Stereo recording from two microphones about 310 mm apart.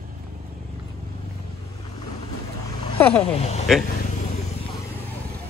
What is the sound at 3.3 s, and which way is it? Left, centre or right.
Speech, centre.